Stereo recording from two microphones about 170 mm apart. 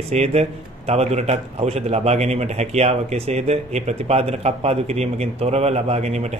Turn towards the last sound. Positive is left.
turn(degrees=-40)  # may be behind; listen again after turning